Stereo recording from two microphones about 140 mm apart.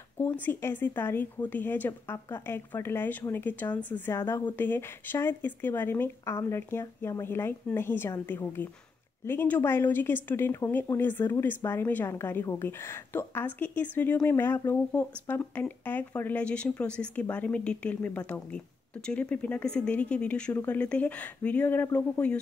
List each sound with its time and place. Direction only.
0.2 s speech: 15° left (ahead or behind)